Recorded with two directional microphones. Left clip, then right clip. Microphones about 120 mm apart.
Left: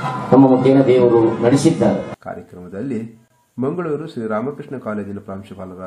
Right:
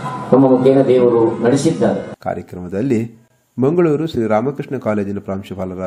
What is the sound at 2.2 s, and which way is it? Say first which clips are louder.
A man's voice: right 8 dB; 45° right (ahead or behind).